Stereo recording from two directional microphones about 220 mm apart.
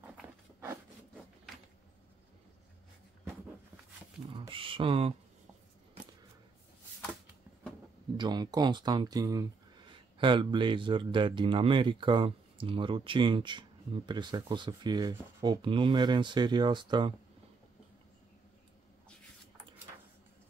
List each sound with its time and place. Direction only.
0.2 s a sound: 10° right (ahead or behind)
4.3 s speech: 25° right (ahead or behind)
8.2 s speech: 20° right (ahead or behind)